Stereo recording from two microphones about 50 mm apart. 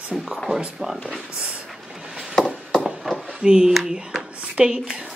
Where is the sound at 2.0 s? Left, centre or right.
Centre.